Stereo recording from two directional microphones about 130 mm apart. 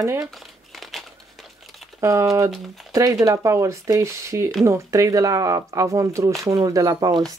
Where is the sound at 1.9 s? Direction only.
25° right (ahead or behind).